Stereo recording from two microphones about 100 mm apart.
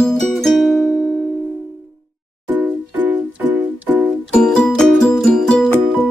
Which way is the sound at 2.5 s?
15° right (ahead or behind).